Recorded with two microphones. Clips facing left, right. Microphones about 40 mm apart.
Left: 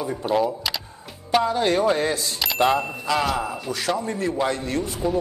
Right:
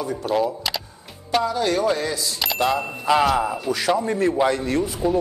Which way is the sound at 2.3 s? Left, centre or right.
Centre.